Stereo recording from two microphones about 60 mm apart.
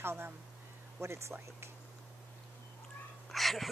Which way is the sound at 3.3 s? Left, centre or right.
Centre.